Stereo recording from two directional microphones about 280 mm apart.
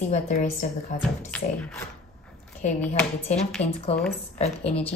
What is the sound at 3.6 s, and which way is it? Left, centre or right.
A woman's voice, left.